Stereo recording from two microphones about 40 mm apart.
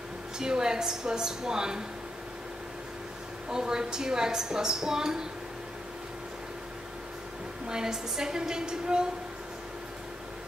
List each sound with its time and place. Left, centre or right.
0.4 s a woman's voice: centre
3.4 s a woman's voice: centre
7.6 s a woman's voice: centre